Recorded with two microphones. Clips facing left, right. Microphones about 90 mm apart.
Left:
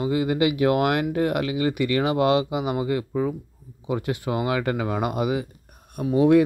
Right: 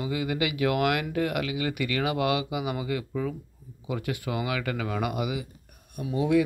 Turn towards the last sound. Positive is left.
turn(degrees=50)  # may be behind; listen again after turning